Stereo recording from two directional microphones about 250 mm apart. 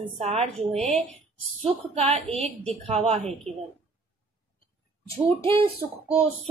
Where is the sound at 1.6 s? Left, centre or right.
Right.